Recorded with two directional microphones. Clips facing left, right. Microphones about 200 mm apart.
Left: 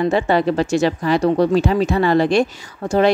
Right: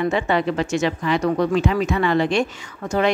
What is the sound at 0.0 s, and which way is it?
Speech, 35° left (ahead or behind).